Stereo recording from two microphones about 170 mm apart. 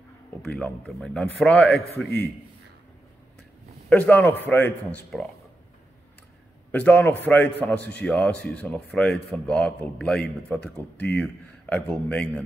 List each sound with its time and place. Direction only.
0.4 s speech: 5° left (ahead or behind)
3.9 s speech: 10° left (ahead or behind)
6.7 s speech: 10° left (ahead or behind)